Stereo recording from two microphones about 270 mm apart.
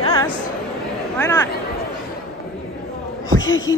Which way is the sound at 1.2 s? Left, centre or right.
Centre.